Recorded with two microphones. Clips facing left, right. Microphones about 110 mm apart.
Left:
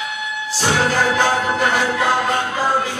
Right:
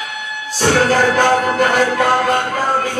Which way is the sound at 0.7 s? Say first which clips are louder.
Right 4 dB; 50° right (ahead or behind).